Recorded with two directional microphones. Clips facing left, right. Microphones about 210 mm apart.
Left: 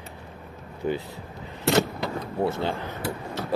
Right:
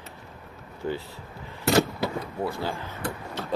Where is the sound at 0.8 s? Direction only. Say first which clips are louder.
Left 3 dB; 20° left (ahead or behind).